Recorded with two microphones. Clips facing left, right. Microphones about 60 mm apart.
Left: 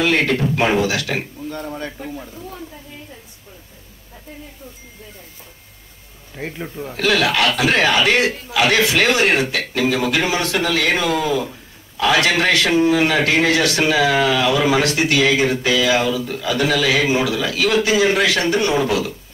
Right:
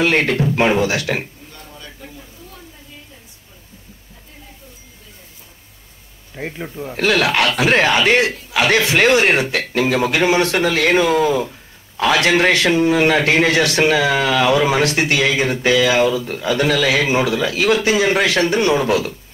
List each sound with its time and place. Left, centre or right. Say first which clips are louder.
0.0 s a man's voice: right 1 dB; right
1.5 s a sound: left 12 dB; left
6.3 s speech: right 1 dB; centre
6.9 s a man's voice: right 1 dB; right
12.0 s a man's voice: right 2 dB; right